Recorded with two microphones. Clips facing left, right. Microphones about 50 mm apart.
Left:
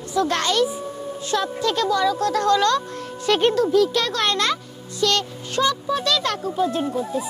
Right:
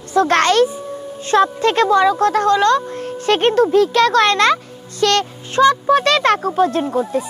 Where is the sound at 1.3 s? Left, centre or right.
Right.